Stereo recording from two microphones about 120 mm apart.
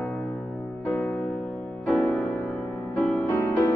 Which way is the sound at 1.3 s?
Centre (ahead or behind).